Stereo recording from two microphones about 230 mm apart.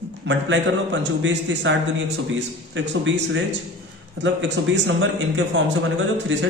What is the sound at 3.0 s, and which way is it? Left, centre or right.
Speech, right.